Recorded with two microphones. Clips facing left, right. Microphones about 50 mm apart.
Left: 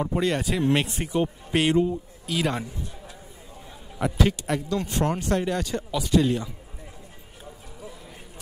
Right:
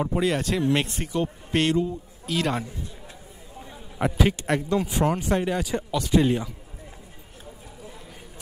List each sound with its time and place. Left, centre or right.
0.0 s a man's voice: centre
4.0 s a man's voice: centre
4.4 s speech: right
4.7 s speech: centre
6.1 s a man's voice: right